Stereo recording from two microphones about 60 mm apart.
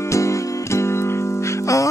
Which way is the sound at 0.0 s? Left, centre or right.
Left.